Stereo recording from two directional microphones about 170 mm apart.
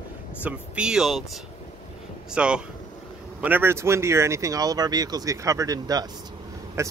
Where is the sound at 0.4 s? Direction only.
5° right (ahead or behind).